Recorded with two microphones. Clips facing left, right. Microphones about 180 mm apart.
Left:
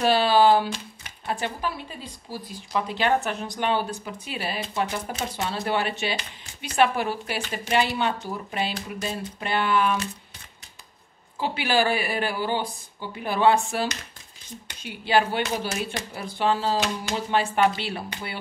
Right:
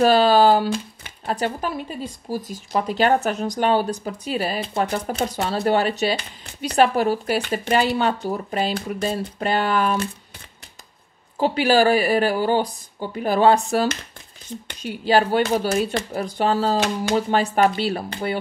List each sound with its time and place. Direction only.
0.0 s speech: 40° right (ahead or behind)
11.3 s speech: 40° right (ahead or behind)
15.9 s speech: 50° right (ahead or behind)